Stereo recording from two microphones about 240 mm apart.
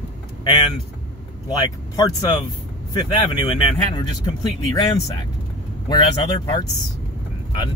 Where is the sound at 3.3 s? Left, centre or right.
Left.